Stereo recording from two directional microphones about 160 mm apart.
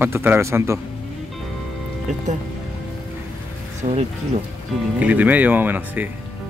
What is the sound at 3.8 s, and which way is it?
Speech, 50° right (ahead or behind).